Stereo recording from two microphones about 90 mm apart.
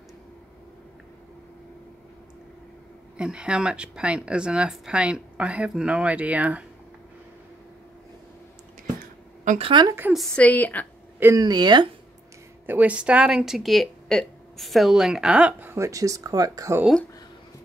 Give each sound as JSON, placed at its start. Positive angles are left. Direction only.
{"t": 3.2, "sound": "speech", "side_deg": -10}
{"t": 9.6, "sound": "speech", "side_deg": -70}
{"t": 10.3, "sound": "a woman's voice", "side_deg": 15}
{"t": 11.3, "sound": "speech", "side_deg": -50}
{"t": 12.6, "sound": "speech", "side_deg": -15}
{"t": 15.7, "sound": "speech", "side_deg": -35}